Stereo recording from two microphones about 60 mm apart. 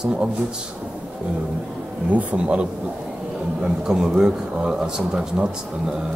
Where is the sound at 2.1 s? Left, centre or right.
Right.